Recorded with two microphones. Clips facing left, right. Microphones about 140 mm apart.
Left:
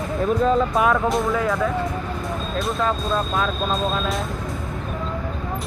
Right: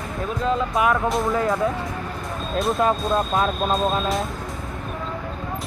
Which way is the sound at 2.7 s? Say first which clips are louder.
Right 2 dB; 20° right (ahead or behind).